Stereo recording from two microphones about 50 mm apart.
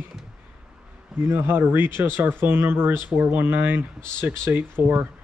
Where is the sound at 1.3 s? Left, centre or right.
Right.